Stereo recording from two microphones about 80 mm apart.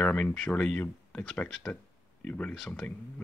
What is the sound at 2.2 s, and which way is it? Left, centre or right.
Speech, centre.